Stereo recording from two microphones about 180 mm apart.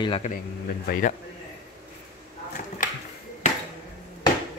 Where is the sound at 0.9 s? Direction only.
50° left (ahead or behind).